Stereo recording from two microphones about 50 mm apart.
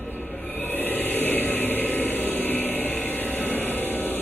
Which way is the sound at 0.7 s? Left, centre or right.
Left.